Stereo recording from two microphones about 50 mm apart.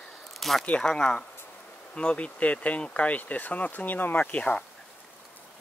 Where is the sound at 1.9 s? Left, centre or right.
Left.